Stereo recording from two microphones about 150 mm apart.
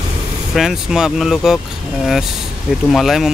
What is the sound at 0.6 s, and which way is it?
Speech, 5° right (ahead or behind).